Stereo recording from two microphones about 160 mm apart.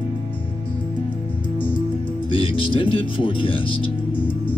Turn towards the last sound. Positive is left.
turn(degrees=35)  # may be behind; listen again after turning